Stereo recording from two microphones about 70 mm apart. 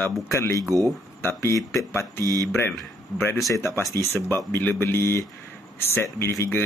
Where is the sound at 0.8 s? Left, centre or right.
Left.